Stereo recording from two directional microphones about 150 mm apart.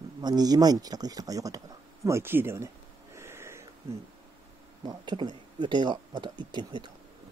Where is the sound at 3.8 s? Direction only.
15° right (ahead or behind).